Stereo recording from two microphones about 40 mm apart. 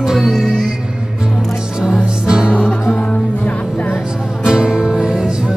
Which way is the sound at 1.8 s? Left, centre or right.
Centre.